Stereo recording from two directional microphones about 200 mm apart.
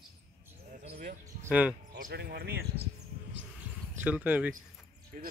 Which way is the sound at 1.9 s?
55° right (ahead or behind).